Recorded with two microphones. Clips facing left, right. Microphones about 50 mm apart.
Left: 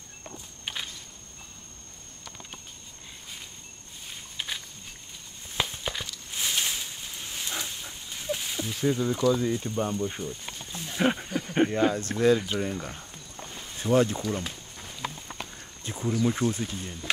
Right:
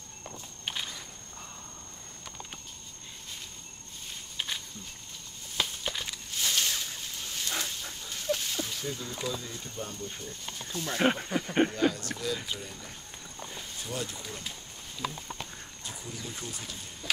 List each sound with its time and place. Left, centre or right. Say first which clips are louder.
0.7 s a sound: left 1 dB; centre
4.4 s wild animals: left 1 dB; centre
5.6 s a sound: left 2 dB; left
8.8 s speech: left 11 dB; left
10.2 s a sound: left 4 dB; centre
11.0 s speech: left 1 dB; centre
11.7 s speech: left 4 dB; left
14.2 s speech: left 10 dB; left
15.8 s speech: left 15 dB; left